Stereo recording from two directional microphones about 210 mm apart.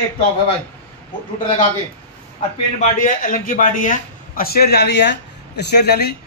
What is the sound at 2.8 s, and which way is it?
A man's voice, 40° left (ahead or behind).